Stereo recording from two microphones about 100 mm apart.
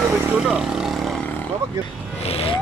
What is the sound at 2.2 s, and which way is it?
Vehicle, 80° left.